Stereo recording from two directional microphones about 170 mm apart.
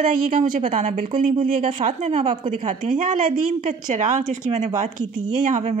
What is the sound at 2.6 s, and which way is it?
Speech, 50° right (ahead or behind).